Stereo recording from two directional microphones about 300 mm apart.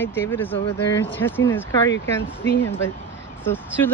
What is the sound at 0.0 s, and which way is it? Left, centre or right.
Speech, centre.